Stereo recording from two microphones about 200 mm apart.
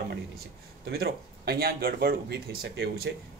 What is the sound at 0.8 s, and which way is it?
Speech, 55° right (ahead or behind).